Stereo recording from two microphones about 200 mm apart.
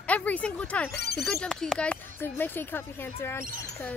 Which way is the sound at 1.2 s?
5° left (ahead or behind).